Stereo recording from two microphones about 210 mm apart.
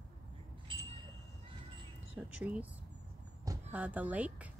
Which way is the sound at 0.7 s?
25° right (ahead or behind).